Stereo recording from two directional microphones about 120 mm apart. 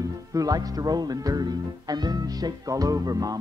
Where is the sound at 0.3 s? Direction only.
30° right (ahead or behind).